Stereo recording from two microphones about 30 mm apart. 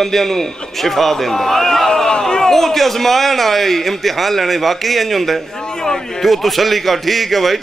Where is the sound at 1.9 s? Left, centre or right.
Left.